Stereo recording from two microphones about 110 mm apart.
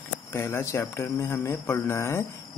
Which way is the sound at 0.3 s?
20° left (ahead or behind).